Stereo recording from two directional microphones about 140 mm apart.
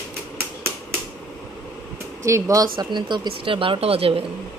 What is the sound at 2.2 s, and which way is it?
Speech, 20° right (ahead or behind).